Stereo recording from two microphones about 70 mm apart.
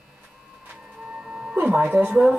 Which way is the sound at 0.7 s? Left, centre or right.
Centre.